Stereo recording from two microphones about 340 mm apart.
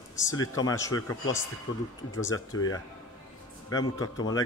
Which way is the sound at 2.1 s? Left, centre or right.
Centre.